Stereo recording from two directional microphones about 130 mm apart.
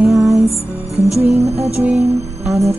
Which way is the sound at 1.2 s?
55° right (ahead or behind).